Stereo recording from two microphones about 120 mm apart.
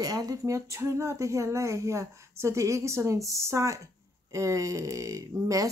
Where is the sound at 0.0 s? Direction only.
30° right (ahead or behind).